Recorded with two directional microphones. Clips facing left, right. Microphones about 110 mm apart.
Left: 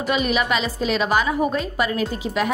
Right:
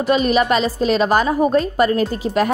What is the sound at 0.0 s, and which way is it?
Speech, 40° right (ahead or behind).